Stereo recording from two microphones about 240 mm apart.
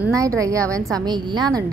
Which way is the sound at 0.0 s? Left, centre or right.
Centre.